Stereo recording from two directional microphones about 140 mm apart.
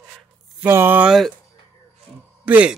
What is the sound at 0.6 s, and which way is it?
Speech, 15° right (ahead or behind).